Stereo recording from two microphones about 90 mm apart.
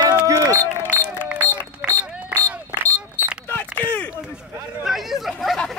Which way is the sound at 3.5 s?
20° left (ahead or behind).